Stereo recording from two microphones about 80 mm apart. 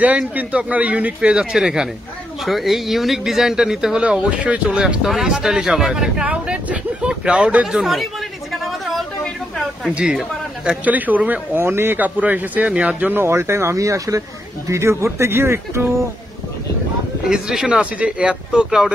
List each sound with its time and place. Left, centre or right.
0.3 s speech: centre
1.3 s speech: centre
6.2 s a sound: centre
9.8 s speech: centre
13.2 s speech: right
17.3 s speech: centre